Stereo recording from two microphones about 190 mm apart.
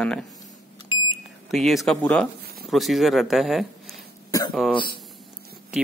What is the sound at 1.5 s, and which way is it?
Speech, centre (ahead or behind).